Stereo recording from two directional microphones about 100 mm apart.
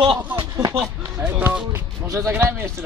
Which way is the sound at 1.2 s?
20° right (ahead or behind).